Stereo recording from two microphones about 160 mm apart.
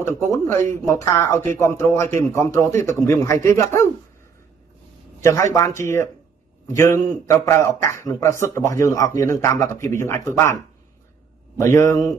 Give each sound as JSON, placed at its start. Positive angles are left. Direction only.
{"t": 0.0, "sound": "a man's voice", "side_deg": 15}
{"t": 5.8, "sound": "a man's voice", "side_deg": 15}
{"t": 11.6, "sound": "a man's voice", "side_deg": 20}